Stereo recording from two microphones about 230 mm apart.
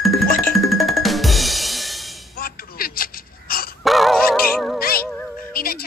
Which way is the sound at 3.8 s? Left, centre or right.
Centre.